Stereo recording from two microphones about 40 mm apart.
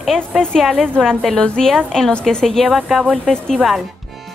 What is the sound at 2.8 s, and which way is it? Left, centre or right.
Speech, centre.